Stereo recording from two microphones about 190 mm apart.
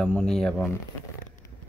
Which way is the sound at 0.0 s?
5° left (ahead or behind).